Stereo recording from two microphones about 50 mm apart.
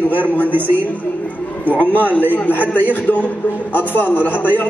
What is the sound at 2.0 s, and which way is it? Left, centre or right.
Speech, right.